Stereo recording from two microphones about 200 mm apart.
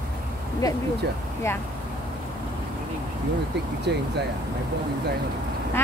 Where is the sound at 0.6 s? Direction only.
20° left (ahead or behind).